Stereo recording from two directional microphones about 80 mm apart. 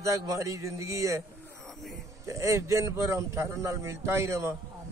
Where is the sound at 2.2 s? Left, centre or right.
Right.